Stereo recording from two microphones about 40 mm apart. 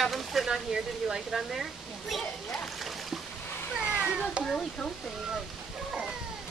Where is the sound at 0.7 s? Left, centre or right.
Right.